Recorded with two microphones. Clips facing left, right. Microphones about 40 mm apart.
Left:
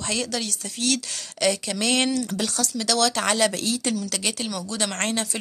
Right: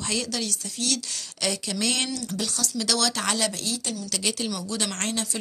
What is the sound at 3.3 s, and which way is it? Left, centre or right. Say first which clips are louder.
Speech: left 5 dB; left.